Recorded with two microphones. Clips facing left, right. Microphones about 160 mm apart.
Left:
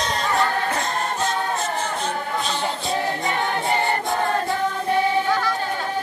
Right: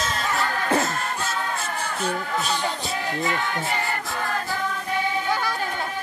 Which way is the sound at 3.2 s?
30° left (ahead or behind).